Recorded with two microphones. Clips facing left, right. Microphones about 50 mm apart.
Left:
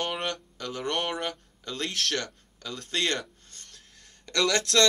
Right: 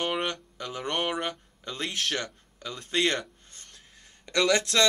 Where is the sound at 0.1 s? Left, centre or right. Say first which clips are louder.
Right 2 dB; centre.